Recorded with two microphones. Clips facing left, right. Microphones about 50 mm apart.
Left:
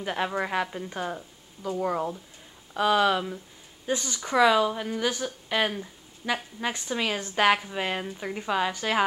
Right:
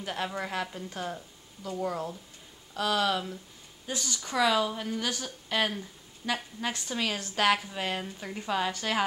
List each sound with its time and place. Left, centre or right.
0.0 s a woman's voice: centre